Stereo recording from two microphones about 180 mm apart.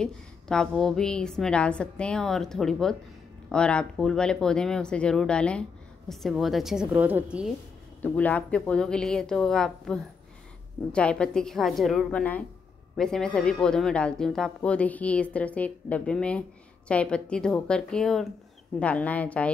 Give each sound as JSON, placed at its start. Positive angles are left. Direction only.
{"t": 0.0, "sound": "a woman's voice", "side_deg": 5}
{"t": 8.0, "sound": "a woman's voice", "side_deg": 10}